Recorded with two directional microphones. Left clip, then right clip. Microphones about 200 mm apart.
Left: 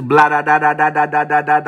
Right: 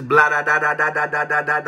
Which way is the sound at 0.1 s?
35° left (ahead or behind).